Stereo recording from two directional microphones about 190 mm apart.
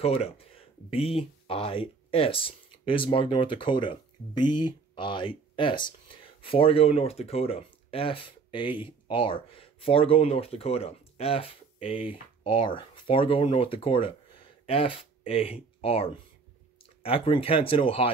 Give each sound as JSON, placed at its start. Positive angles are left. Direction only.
{"t": 0.0, "sound": "speech", "side_deg": 30}